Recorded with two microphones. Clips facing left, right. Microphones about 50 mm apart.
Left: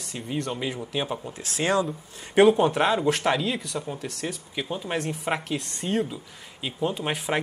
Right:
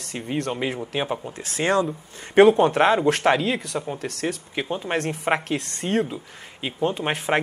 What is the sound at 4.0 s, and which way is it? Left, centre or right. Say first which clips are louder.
Speech: right 4 dB; right.